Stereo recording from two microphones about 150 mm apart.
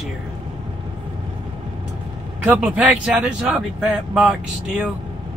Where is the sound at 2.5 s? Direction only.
5° right (ahead or behind).